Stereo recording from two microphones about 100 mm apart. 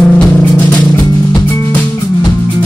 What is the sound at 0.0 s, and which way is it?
Music, 10° left (ahead or behind).